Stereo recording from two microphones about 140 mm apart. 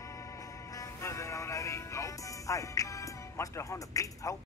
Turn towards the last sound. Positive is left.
turn(degrees=25)  # may be behind; listen again after turning